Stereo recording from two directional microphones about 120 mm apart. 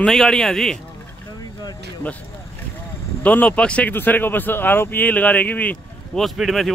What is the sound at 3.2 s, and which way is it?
Speech, 15° left (ahead or behind).